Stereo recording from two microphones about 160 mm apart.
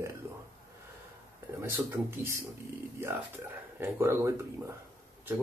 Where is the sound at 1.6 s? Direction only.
15° right (ahead or behind).